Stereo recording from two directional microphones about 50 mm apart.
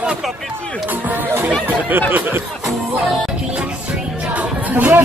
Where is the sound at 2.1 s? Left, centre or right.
Right.